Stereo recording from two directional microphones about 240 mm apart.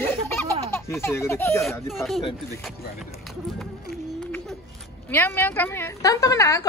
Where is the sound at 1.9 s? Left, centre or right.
Centre.